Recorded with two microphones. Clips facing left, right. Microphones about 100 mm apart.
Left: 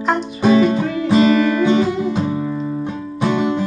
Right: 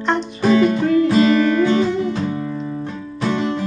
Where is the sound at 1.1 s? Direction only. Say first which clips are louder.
Left 1 dB; 20° left (ahead or behind).